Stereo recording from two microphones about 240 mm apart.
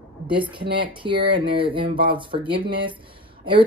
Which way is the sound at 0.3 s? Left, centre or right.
Right.